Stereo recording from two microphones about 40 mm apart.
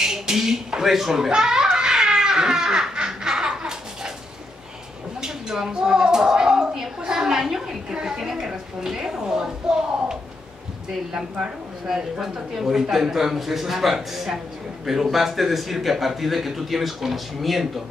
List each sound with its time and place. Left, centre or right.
0.0 s a sound: centre
5.2 s a woman's voice: centre
11.4 s a man's voice: centre